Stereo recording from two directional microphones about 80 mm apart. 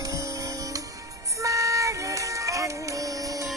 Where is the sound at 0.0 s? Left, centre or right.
Right.